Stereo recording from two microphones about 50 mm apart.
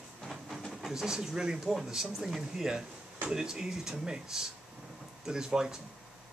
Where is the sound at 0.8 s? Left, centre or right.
Centre.